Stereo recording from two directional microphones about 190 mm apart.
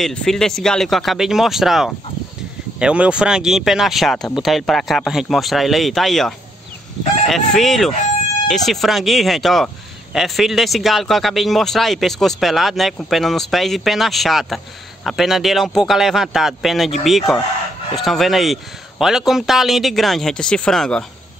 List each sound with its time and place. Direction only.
0.0 s speech: 5° left (ahead or behind)